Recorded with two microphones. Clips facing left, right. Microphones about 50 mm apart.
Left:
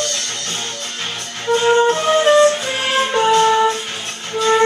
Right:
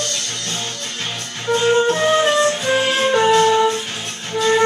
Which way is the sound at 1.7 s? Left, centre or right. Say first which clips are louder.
Left 1 dB; centre.